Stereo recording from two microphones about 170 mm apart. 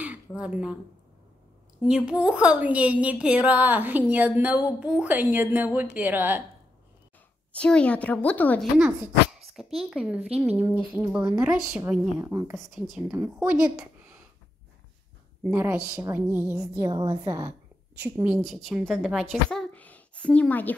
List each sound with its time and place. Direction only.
0.0 s speech: 10° right (ahead or behind)
1.8 s a woman's voice: 5° right (ahead or behind)
7.5 s a woman's voice: 5° left (ahead or behind)
8.7 s a woman's voice: 5° right (ahead or behind)
12.5 s speech: centre (ahead or behind)
15.5 s a woman's voice: 10° right (ahead or behind)
16.7 s a woman's voice: 25° right (ahead or behind)
18.2 s speech: centre (ahead or behind)